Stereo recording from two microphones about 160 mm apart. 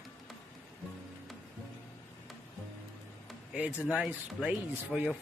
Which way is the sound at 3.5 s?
10° right (ahead or behind).